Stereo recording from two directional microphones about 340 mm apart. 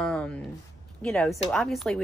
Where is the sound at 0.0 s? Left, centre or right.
Centre.